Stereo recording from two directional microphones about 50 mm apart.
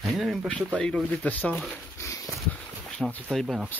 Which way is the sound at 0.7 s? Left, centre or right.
Centre.